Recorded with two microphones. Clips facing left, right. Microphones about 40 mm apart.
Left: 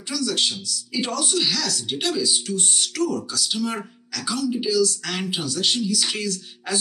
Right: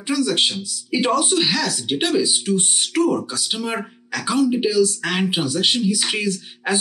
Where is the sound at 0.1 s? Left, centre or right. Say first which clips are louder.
Right 5 dB; right.